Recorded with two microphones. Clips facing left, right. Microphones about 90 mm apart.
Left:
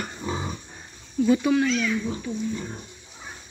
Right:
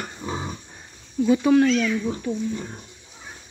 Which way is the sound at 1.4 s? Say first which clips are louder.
Right 5 dB; 40° right (ahead or behind).